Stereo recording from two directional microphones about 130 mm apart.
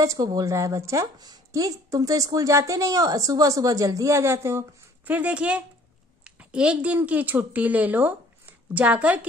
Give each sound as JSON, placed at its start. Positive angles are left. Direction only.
{"t": 0.0, "sound": "a woman's voice", "side_deg": -25}